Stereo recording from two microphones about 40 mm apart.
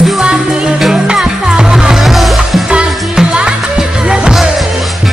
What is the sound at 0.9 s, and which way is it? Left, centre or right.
Music, centre.